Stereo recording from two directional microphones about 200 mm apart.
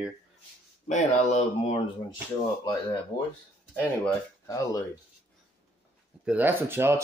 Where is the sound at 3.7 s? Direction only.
10° left (ahead or behind).